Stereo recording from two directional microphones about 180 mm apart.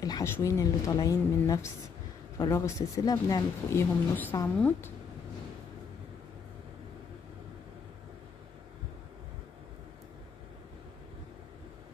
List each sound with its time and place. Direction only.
0.0 s a woman's voice: 20° left (ahead or behind)